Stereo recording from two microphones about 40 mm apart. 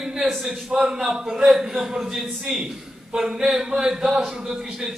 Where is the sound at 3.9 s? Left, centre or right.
Centre.